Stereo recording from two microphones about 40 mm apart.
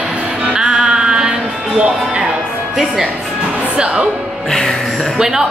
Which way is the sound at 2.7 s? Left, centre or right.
Centre.